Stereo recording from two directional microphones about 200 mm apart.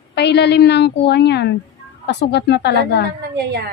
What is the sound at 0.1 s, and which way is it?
A woman's voice, 55° left (ahead or behind).